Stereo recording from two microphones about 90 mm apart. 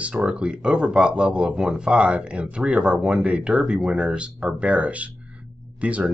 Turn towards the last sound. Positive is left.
turn(degrees=-15)  # may be behind; listen again after turning